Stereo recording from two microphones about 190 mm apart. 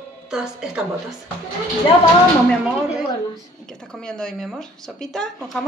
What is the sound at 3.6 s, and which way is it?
Speech, 5° left (ahead or behind).